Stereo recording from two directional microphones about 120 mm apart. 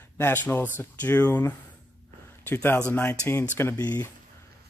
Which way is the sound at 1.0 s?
15° left (ahead or behind).